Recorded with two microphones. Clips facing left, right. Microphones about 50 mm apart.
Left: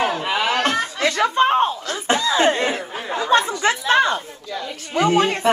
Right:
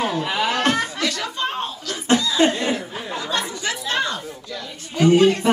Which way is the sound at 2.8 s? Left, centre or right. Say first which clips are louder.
Left 4 dB; left.